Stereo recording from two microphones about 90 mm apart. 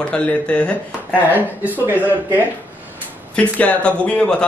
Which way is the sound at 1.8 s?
20° right (ahead or behind).